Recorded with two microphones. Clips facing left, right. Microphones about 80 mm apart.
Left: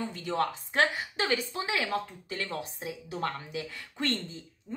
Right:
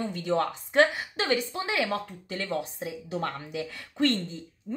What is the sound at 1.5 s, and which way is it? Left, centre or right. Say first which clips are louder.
Speech: right 2 dB; right.